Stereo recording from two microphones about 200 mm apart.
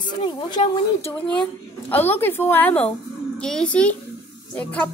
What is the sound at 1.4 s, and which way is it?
A woman's voice, 10° left (ahead or behind).